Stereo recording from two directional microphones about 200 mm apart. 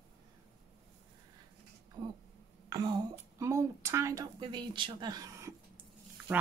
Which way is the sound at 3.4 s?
15° right (ahead or behind).